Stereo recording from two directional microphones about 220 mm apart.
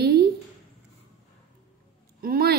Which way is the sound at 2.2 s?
45° right (ahead or behind).